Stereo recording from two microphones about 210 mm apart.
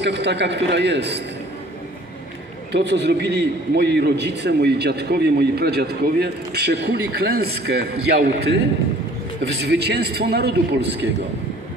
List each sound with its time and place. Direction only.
0.0 s a man's voice: 55° right (ahead or behind)
2.7 s a man's voice: 55° right (ahead or behind)
9.4 s a man's voice: 50° right (ahead or behind)